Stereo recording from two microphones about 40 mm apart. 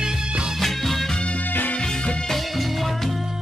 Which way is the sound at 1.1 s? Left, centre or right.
Left.